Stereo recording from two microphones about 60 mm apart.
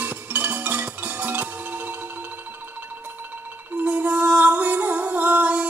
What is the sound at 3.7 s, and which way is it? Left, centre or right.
Music, right.